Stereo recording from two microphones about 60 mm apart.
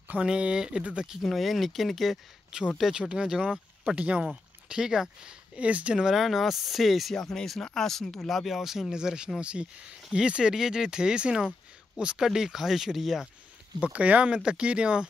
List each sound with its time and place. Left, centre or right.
0.1 s speech: centre
1.2 s speech: centre
2.5 s speech: centre
5.6 s speech: right
5.9 s speech: centre
13.8 s speech: right